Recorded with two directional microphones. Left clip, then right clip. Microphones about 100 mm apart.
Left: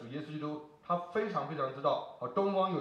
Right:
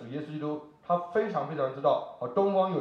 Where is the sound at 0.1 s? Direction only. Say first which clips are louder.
Right 6 dB; 5° left (ahead or behind).